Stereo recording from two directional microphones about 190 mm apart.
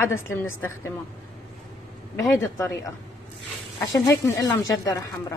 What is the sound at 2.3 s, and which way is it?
Speech, 15° left (ahead or behind).